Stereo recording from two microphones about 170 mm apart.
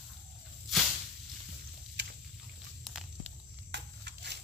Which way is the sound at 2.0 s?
85° right.